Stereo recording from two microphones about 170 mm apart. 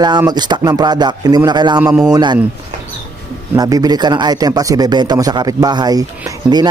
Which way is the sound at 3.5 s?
20° right (ahead or behind).